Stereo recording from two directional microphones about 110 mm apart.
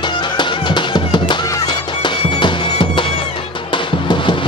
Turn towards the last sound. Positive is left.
turn(degrees=50)  # may be behind; listen again after turning